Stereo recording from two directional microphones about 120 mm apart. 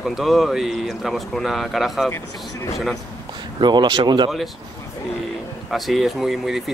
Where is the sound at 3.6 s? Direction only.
40° right (ahead or behind).